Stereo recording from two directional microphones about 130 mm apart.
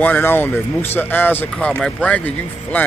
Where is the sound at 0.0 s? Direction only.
15° left (ahead or behind).